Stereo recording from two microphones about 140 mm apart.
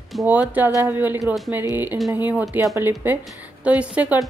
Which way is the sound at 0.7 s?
25° right (ahead or behind).